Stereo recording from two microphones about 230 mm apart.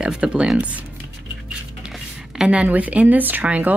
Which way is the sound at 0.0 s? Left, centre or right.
Centre.